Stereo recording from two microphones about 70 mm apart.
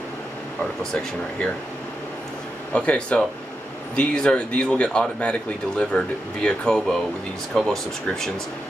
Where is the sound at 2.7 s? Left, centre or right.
Centre.